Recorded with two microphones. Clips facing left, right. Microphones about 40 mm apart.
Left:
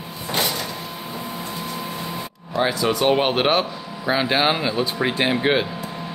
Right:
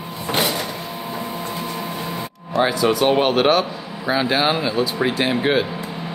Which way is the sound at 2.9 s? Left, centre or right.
Centre.